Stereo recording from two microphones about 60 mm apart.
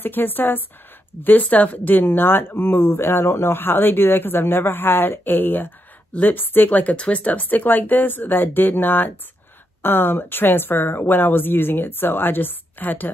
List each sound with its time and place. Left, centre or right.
0.0 s speech: left